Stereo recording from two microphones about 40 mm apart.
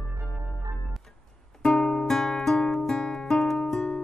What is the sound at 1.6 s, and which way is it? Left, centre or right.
Music, centre.